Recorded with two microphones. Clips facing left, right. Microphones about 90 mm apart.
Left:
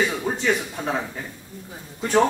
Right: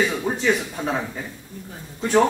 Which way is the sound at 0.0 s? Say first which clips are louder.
Right 1 dB; 5° left (ahead or behind).